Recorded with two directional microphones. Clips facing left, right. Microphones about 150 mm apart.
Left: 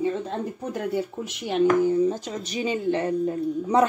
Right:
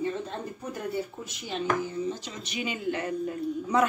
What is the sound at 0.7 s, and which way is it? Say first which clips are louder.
Speech: left 5 dB; 90° left.